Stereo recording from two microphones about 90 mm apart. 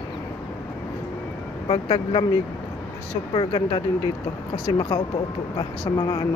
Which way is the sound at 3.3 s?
65° left (ahead or behind).